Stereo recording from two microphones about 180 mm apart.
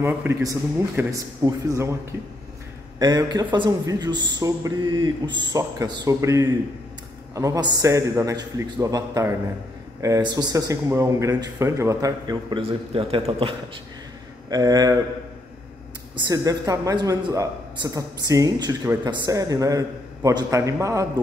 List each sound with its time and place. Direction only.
0.0 s speech: 15° right (ahead or behind)
3.0 s speech: 25° right (ahead or behind)
14.5 s speech: 20° right (ahead or behind)
16.3 s speech: 20° right (ahead or behind)